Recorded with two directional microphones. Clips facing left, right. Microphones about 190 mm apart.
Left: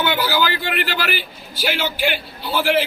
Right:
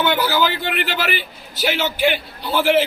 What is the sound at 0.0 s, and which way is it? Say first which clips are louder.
A man's voice: right 2 dB; 5° left (ahead or behind).